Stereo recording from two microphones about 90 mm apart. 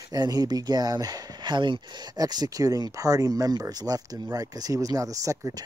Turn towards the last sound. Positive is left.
turn(degrees=-40)  # may be behind; listen again after turning